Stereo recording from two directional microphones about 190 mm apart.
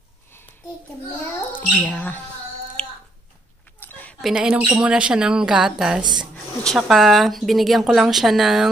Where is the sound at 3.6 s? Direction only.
10° left (ahead or behind).